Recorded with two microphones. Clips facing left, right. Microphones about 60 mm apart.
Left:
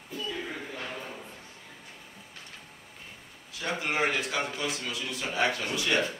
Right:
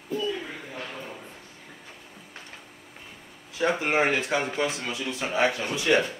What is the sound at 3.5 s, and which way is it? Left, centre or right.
A man's voice, right.